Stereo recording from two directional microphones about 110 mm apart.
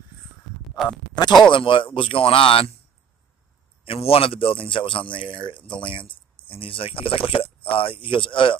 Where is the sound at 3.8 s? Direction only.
60° left (ahead or behind).